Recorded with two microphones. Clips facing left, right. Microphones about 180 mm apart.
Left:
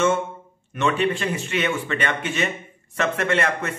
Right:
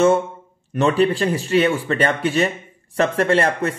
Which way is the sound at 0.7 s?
35° right (ahead or behind).